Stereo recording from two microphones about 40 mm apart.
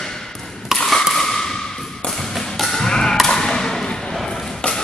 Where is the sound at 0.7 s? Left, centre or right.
Centre.